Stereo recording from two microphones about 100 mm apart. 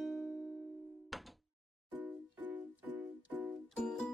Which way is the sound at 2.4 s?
15° right (ahead or behind).